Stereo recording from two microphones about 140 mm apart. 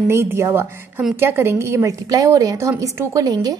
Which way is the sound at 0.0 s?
15° right (ahead or behind).